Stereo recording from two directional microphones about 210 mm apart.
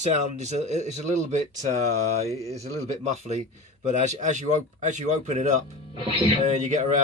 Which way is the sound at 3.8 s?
35° right (ahead or behind).